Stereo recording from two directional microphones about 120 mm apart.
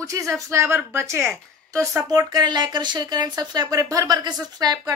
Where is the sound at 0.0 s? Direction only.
25° right (ahead or behind).